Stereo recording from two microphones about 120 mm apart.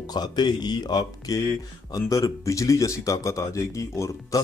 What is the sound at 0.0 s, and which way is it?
Speech, 35° left (ahead or behind).